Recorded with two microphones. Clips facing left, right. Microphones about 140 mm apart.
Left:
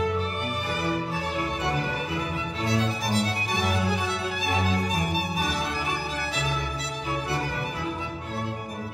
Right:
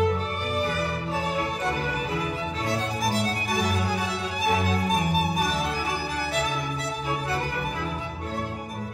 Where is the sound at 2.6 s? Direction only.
45° right (ahead or behind).